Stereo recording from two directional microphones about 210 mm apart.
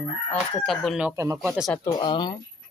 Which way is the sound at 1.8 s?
20° left (ahead or behind).